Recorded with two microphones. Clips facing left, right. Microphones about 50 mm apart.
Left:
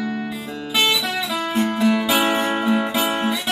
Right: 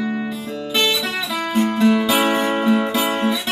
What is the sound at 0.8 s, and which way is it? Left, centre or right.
Music, centre.